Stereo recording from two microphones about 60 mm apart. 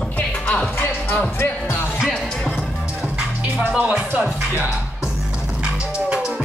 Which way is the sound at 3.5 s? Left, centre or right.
Centre.